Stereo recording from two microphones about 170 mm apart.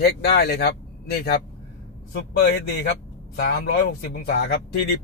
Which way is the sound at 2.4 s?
90° left.